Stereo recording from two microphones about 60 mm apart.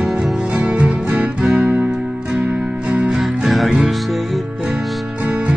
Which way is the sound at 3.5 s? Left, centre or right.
Centre.